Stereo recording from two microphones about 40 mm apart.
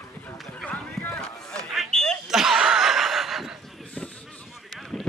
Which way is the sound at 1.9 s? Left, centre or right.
Centre.